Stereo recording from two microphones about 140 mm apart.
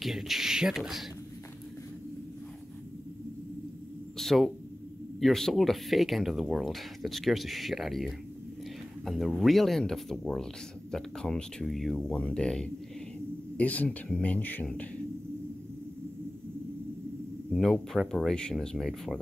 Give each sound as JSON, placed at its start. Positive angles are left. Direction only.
{"t": 0.0, "sound": "speech", "side_deg": 0}
{"t": 4.2, "sound": "a sound", "side_deg": 0}
{"t": 5.2, "sound": "speech", "side_deg": 0}
{"t": 17.5, "sound": "speech", "side_deg": 5}